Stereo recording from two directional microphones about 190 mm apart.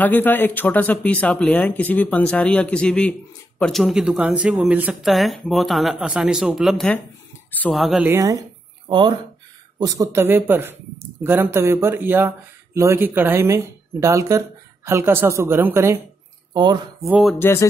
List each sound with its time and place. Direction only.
0.0 s speech: 10° left (ahead or behind)
8.1 s speech: 15° right (ahead or behind)
17.1 s speech: centre (ahead or behind)
17.4 s music: 15° left (ahead or behind)